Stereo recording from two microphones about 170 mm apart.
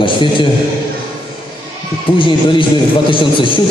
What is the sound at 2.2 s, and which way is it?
A man's voice, 30° left (ahead or behind).